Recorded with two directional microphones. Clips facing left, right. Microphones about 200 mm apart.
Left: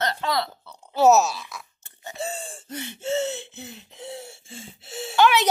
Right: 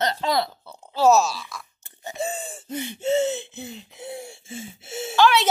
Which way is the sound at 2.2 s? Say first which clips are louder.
Right 2 dB; 10° right (ahead or behind).